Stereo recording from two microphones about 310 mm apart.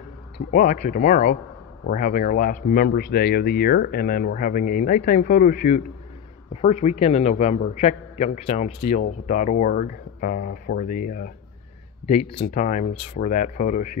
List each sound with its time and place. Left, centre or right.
0.5 s speech: left